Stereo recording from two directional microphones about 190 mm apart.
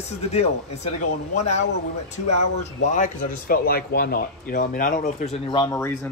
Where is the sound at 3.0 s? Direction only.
50° left (ahead or behind).